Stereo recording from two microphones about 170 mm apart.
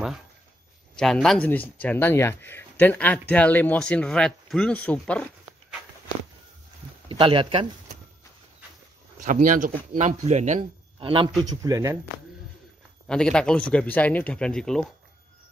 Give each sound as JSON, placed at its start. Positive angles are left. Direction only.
{"t": 0.9, "sound": "speech", "side_deg": 5}
{"t": 7.1, "sound": "speech", "side_deg": -30}
{"t": 9.2, "sound": "speech", "side_deg": -50}
{"t": 11.0, "sound": "a man's voice", "side_deg": -30}
{"t": 11.6, "sound": "speech", "side_deg": -20}
{"t": 13.1, "sound": "speech", "side_deg": 5}